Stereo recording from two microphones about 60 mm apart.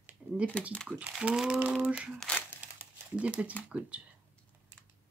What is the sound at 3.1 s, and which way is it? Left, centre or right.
Speech, centre.